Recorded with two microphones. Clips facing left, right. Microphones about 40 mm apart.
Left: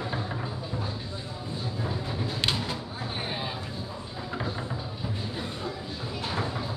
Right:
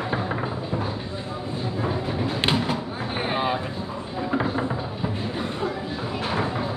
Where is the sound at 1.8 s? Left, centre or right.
Right.